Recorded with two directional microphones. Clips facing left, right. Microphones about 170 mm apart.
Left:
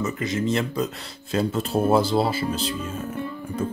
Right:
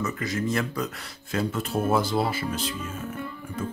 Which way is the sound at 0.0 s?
20° left (ahead or behind).